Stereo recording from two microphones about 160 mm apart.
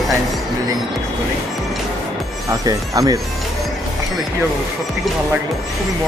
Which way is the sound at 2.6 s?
25° right (ahead or behind).